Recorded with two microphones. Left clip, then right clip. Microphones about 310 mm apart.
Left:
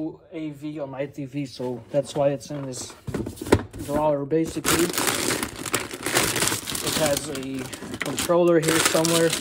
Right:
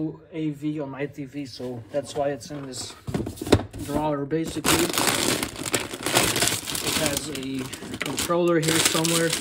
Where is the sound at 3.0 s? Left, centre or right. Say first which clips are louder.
Even; centre.